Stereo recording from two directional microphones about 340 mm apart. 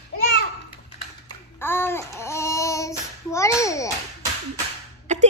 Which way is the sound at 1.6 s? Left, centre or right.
Centre.